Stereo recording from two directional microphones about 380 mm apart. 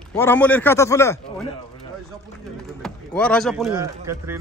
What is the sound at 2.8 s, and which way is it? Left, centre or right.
Speech, centre.